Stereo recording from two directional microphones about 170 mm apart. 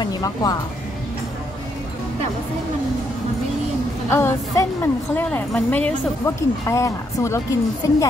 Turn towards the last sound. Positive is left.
turn(degrees=20)  # may be behind; listen again after turning